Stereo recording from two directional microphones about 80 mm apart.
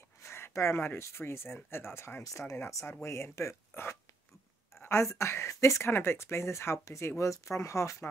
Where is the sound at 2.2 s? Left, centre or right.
Left.